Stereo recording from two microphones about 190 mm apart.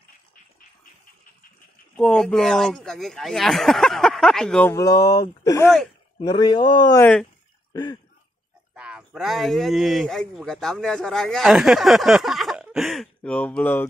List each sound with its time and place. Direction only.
2.0 s speech: 5° left (ahead or behind)
4.7 s speech: 20° left (ahead or behind)
7.0 s speech: 5° left (ahead or behind)
7.7 s throat clearing: 20° left (ahead or behind)
8.7 s speech: 5° right (ahead or behind)